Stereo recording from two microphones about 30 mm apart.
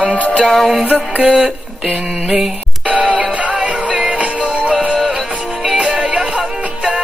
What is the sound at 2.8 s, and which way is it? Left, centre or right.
Music, right.